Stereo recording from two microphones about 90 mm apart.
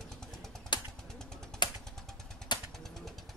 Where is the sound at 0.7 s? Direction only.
60° left (ahead or behind).